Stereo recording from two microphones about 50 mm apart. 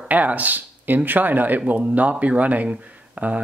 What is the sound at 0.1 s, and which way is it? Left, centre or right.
Speech, right.